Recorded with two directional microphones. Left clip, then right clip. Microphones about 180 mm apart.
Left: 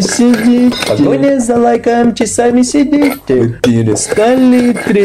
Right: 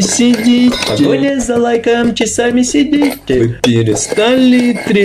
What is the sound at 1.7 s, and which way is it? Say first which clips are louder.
Speech: left 1 dB; 30° left (ahead or behind).